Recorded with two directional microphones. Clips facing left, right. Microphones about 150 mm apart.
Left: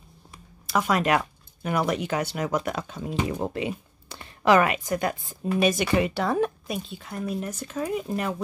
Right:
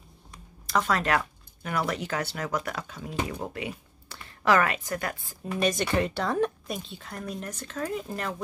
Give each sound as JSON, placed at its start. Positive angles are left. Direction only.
{"t": 0.7, "sound": "a woman's voice", "side_deg": 10}
{"t": 5.5, "sound": "speech", "side_deg": 5}